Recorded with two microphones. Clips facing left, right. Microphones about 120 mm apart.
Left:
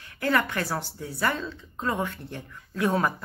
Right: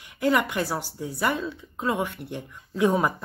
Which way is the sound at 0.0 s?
15° right (ahead or behind).